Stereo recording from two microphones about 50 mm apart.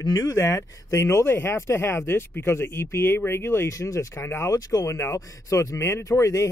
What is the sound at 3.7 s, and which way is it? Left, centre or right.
Speech, left.